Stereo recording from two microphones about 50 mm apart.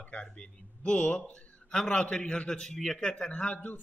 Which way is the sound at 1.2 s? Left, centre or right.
Left.